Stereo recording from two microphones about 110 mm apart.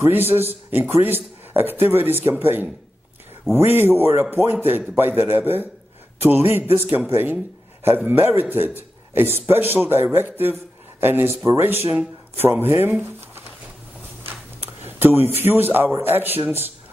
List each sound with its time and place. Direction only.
0.0 s speech: 20° right (ahead or behind)
14.9 s speech: 20° right (ahead or behind)